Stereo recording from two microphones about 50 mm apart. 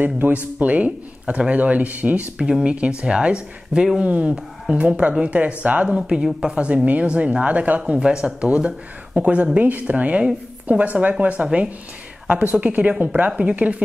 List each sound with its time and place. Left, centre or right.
0.0 s speech: right
7.8 s speech: centre